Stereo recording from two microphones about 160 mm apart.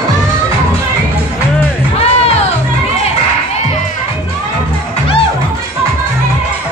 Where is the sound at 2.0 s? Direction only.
40° left (ahead or behind).